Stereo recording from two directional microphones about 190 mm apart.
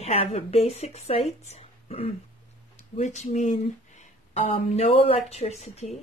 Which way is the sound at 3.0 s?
35° left (ahead or behind).